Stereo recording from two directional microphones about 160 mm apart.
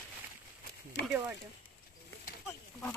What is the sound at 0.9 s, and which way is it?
Speech, 90° left.